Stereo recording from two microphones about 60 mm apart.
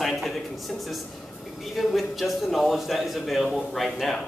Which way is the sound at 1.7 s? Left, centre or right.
Centre.